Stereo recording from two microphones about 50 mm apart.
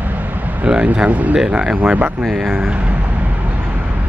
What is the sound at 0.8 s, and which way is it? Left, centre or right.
Speech, right.